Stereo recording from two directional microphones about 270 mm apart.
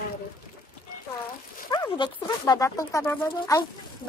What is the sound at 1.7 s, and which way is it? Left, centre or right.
Speech, centre.